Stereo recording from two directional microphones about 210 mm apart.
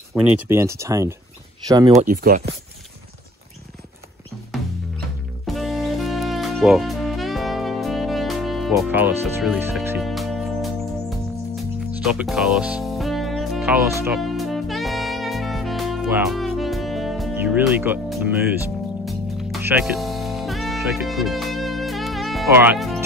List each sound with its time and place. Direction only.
0.1 s speech: 10° right (ahead or behind)
2.0 s speech: 40° right (ahead or behind)
5.5 s music: centre (ahead or behind)
8.7 s speech: 10° right (ahead or behind)
10.0 s music: centre (ahead or behind)
14.0 s saxophone: centre (ahead or behind)
19.0 s music: centre (ahead or behind)
22.5 s speech: 10° right (ahead or behind)